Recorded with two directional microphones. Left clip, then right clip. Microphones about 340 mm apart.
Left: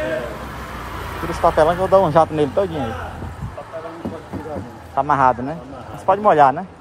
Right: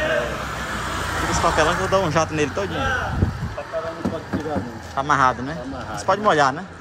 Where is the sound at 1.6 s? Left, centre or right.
Centre.